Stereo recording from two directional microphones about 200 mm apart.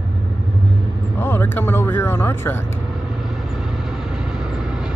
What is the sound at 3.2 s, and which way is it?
Vehicle, centre (ahead or behind).